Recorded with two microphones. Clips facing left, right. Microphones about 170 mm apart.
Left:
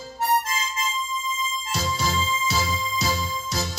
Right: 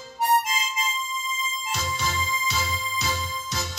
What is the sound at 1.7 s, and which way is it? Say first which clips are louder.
Music: left 3 dB; 35° left (ahead or behind).